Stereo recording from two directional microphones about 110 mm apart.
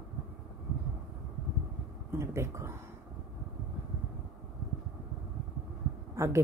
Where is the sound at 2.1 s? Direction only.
25° right (ahead or behind).